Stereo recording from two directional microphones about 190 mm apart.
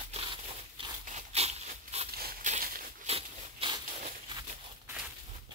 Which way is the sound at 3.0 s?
30° right (ahead or behind).